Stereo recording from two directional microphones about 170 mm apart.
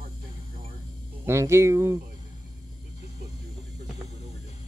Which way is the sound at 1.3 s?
15° right (ahead or behind).